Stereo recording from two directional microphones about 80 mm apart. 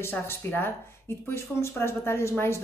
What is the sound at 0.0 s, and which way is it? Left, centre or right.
A man's voice, left.